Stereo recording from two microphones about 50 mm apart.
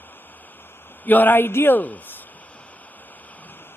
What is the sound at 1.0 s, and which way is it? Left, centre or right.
Speech, left.